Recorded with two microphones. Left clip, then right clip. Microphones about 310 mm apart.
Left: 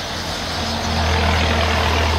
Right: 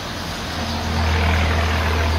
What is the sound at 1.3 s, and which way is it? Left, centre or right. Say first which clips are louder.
Vehicle: left 3 dB; left.